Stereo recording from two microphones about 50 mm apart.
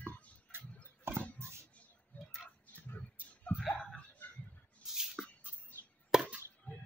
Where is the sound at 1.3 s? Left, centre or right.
Right.